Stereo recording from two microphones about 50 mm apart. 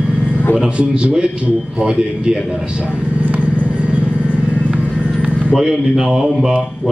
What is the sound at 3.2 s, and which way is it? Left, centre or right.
Vehicle, right.